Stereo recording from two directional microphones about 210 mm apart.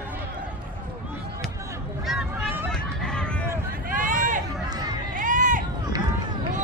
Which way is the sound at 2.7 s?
5° left (ahead or behind).